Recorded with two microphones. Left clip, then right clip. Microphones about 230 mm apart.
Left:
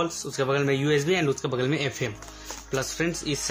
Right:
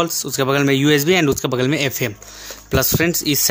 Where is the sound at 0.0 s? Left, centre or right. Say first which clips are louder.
Right 8 dB; right.